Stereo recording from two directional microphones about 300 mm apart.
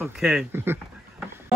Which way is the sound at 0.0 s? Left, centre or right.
Centre.